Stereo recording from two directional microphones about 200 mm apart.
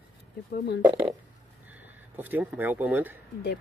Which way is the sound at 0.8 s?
15° right (ahead or behind).